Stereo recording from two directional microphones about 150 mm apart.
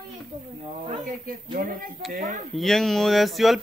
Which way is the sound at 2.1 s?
55° right (ahead or behind).